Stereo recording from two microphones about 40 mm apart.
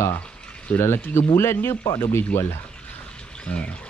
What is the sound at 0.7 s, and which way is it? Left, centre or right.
Speech, left.